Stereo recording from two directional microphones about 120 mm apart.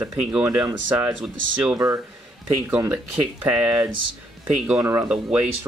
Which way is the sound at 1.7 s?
25° right (ahead or behind).